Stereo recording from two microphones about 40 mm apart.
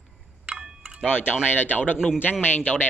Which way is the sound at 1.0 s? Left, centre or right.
Left.